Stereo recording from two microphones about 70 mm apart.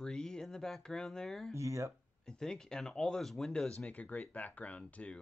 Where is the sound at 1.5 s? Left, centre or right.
Right.